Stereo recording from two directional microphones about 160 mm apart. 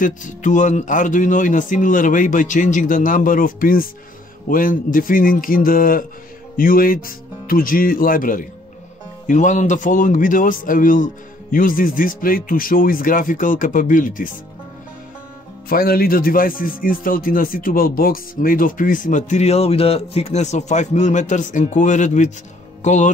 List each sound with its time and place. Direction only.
0.0 s speech: 50° left (ahead or behind)
15.7 s speech: 65° left (ahead or behind); by 23.1 s 50° left (ahead or behind)